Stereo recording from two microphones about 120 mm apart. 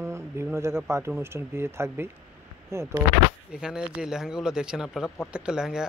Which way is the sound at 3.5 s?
5° right (ahead or behind).